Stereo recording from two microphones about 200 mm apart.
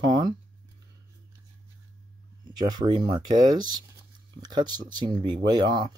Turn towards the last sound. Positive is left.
turn(degrees=-20)  # may be behind; listen again after turning